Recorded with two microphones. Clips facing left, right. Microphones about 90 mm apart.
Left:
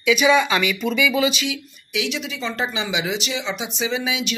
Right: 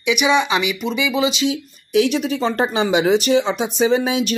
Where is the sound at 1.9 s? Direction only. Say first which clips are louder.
Right 9 dB; 45° right (ahead or behind).